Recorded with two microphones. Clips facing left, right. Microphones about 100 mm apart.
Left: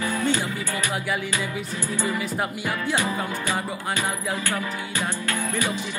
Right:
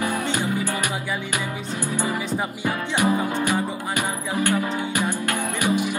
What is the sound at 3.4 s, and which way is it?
Music, 15° right (ahead or behind).